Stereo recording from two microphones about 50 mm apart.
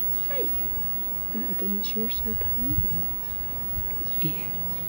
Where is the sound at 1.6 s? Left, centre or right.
Left.